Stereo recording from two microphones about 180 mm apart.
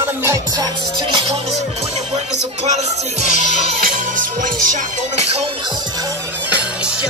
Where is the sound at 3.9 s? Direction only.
45° right (ahead or behind).